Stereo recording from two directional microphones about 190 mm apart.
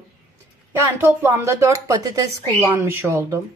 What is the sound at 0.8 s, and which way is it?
A woman's voice, 10° right (ahead or behind).